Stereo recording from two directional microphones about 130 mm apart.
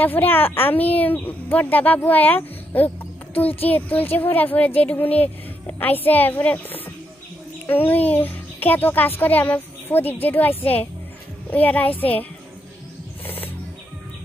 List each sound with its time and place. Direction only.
0.0 s a child's voice: 15° left (ahead or behind)